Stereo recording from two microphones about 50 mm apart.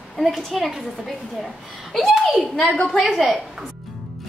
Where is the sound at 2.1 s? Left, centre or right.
Centre.